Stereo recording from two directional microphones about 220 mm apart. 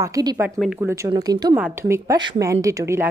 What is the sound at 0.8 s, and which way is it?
A woman's voice, 15° right (ahead or behind).